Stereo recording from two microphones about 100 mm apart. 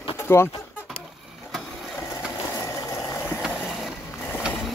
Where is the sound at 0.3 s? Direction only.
25° left (ahead or behind).